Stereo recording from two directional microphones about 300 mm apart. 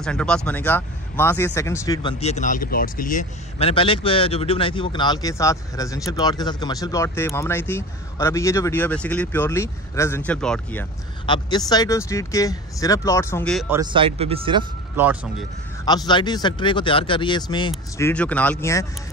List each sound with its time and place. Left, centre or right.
0.0 s speech: centre
13.7 s speech: centre
15.0 s speech: centre
15.8 s speech: centre